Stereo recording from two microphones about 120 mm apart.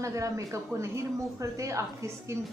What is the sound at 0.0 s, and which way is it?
Speech, 25° right (ahead or behind).